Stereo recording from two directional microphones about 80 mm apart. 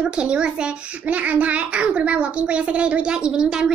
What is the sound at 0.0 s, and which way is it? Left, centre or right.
A child's voice, centre.